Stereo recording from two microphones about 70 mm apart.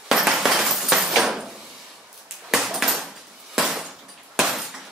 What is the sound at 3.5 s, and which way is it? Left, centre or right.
Glass, centre.